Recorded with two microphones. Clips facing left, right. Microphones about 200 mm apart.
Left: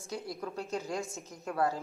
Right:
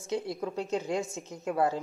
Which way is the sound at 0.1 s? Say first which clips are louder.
Right 6 dB; 25° right (ahead or behind).